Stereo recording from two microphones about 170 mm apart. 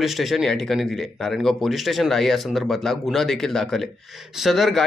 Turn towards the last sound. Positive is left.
turn(degrees=0)  # may be behind; listen again after turning